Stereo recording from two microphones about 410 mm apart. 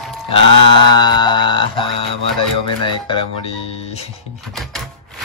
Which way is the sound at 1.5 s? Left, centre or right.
Centre.